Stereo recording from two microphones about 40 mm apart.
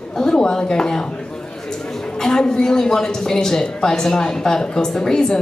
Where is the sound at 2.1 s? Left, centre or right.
Centre.